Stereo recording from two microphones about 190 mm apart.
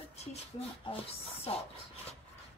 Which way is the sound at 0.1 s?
35° left (ahead or behind).